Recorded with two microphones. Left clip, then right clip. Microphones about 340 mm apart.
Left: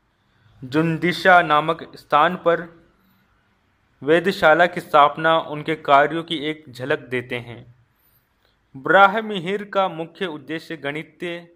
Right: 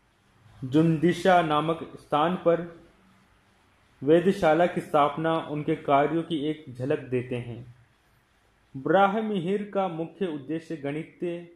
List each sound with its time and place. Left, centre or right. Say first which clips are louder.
0.7 s a man's voice: left 2 dB; left
4.0 s a man's voice: left 5 dB; left
7.1 s a man's voice: left 4 dB; left
8.8 s speech: left 8 dB; left